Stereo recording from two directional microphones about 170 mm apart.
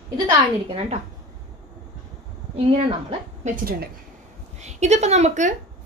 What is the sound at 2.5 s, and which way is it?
A woman's voice, 40° right (ahead or behind).